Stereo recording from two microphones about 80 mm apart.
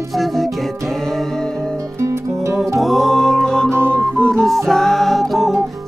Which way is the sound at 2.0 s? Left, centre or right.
Right.